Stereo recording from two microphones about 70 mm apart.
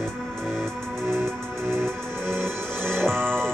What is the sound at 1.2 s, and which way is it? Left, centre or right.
Music, right.